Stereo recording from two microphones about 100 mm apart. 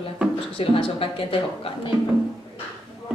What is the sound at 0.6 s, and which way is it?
Speech, 65° left (ahead or behind).